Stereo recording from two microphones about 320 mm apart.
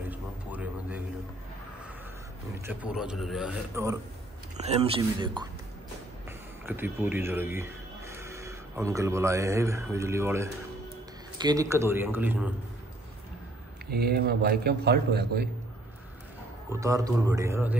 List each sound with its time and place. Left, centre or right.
0.1 s a sound: centre
2.6 s a man's voice: centre
4.6 s speech: centre
6.6 s speech: centre
13.8 s a man's voice: right
16.8 s speech: centre